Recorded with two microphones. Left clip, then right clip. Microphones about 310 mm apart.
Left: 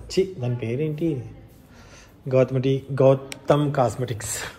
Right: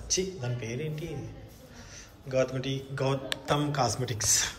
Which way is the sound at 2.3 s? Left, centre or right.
Centre.